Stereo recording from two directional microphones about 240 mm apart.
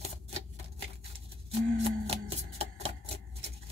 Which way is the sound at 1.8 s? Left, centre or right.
Right.